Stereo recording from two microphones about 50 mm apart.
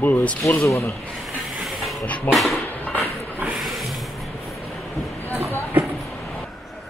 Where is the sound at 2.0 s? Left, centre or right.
Left.